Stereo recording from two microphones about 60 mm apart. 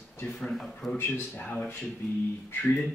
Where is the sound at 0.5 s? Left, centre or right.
Centre.